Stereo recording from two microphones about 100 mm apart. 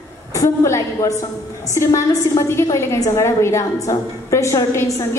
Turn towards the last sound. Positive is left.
turn(degrees=25)  # may be behind; listen again after turning